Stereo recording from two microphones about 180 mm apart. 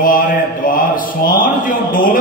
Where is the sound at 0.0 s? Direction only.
50° left (ahead or behind).